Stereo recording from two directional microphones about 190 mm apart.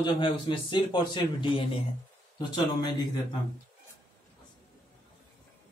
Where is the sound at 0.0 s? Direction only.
25° left (ahead or behind).